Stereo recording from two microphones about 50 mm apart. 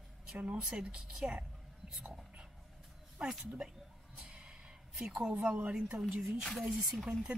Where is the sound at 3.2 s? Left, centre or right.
Centre.